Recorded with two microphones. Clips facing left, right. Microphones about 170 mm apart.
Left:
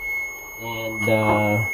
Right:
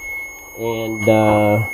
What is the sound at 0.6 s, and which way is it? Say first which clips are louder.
Speech: right 9 dB; 90° right.